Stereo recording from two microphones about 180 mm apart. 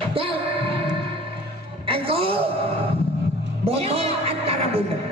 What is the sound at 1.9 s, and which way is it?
Music, 30° right (ahead or behind).